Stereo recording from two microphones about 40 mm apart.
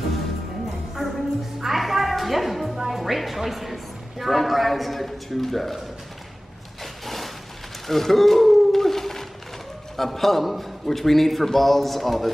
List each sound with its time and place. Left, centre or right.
1.0 s music: centre
6.8 s a sound: centre
9.9 s a man's voice: centre